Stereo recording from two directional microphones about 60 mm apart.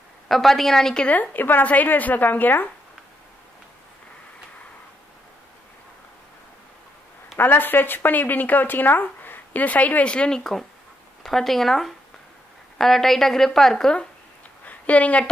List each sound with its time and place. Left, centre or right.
0.3 s a woman's voice: centre
1.0 s speech: left
7.3 s speech: left; by 10.4 s centre
11.2 s a woman's voice: centre
14.6 s a sound: left